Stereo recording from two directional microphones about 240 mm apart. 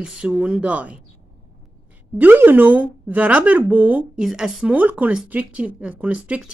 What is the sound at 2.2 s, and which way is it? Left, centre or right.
A woman's voice, centre.